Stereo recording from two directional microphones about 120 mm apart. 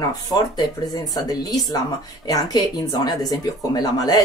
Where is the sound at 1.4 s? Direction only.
30° left (ahead or behind).